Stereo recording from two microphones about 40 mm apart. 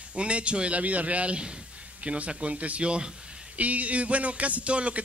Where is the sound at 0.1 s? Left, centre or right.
Right.